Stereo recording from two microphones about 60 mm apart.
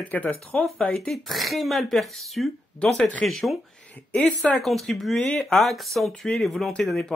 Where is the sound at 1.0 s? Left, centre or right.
Centre.